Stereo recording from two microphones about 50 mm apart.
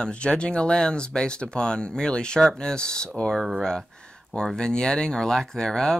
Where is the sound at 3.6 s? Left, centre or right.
Centre.